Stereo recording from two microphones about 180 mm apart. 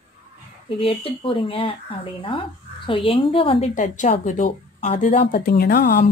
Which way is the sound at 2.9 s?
30° left (ahead or behind).